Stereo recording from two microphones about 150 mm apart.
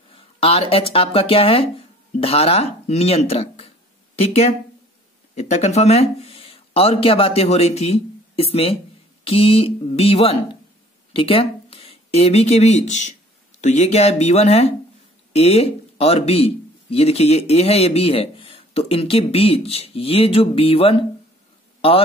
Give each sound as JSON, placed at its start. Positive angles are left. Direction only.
{"t": 0.1, "sound": "speech", "side_deg": 40}